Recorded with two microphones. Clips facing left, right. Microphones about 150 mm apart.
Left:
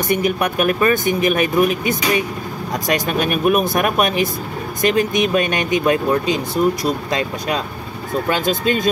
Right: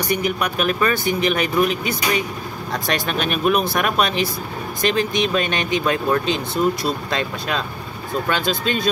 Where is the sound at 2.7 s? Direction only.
15° left (ahead or behind).